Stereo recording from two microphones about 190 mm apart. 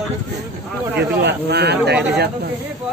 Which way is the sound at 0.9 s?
60° right (ahead or behind).